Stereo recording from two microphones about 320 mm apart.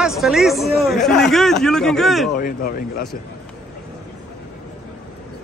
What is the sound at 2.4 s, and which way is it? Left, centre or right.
Speech, left.